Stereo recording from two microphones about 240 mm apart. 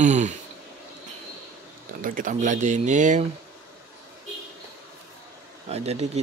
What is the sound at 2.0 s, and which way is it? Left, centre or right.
Speech, right.